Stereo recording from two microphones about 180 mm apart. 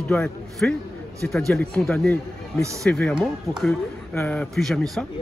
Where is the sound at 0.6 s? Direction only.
5° left (ahead or behind).